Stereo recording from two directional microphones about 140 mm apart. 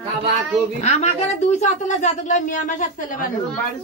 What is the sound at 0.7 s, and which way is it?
Speech, 55° left (ahead or behind).